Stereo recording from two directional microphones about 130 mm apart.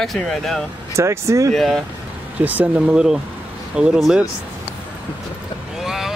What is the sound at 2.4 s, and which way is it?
Speech, 10° right (ahead or behind).